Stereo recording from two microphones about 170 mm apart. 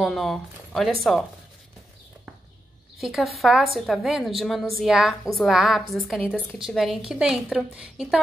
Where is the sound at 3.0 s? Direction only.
Centre (ahead or behind).